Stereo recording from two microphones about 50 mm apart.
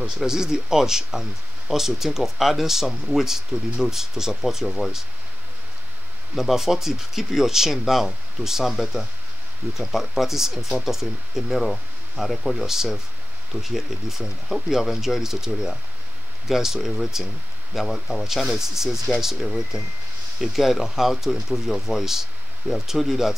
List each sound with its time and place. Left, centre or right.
0.2 s speech: centre
6.3 s speech: centre